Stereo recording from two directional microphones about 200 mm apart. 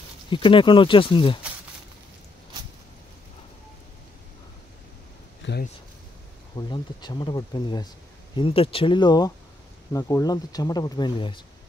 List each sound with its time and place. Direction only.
0.3 s speech: 25° left (ahead or behind)
5.4 s a sound: 65° left (ahead or behind)
6.5 s speech: 20° left (ahead or behind)